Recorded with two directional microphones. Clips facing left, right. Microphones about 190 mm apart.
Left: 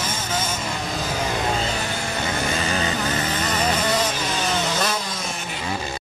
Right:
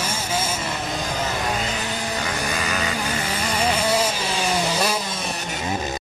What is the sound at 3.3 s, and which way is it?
Vehicle, 10° right (ahead or behind).